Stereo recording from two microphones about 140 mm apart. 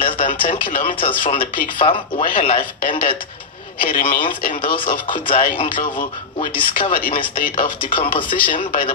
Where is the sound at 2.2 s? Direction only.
70° left (ahead or behind).